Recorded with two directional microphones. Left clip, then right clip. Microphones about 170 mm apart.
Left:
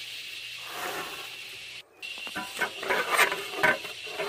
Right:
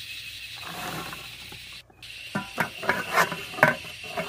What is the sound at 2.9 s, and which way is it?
Stir, 50° left (ahead or behind).